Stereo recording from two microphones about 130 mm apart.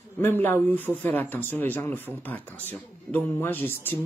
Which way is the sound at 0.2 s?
15° left (ahead or behind).